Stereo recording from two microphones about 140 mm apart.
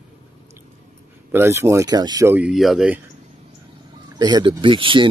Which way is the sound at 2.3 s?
5° right (ahead or behind).